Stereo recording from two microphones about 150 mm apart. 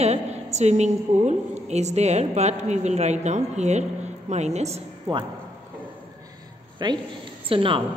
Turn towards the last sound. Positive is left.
turn(degrees=-35)  # may be behind; listen again after turning